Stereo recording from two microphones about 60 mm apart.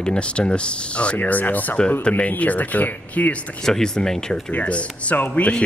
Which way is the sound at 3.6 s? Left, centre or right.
Centre.